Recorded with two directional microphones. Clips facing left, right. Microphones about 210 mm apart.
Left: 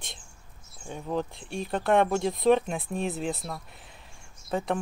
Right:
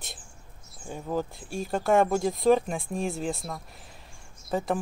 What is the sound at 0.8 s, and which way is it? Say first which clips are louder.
Speech: even; 5° right (ahead or behind).